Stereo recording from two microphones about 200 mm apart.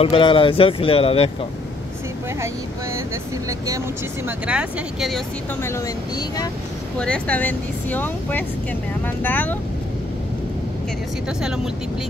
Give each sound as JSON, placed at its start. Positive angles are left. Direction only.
{"t": 0.0, "sound": "speech", "side_deg": 25}
{"t": 3.4, "sound": "speech", "side_deg": -15}
{"t": 4.5, "sound": "speech", "side_deg": -5}
{"t": 5.6, "sound": "speech", "side_deg": 15}
{"t": 7.0, "sound": "speech", "side_deg": 5}
{"t": 11.4, "sound": "speech", "side_deg": -5}